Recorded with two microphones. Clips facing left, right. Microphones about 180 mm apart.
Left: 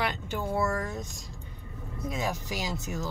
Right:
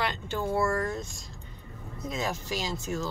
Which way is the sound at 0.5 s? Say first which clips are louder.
Right 1 dB; 10° right (ahead or behind).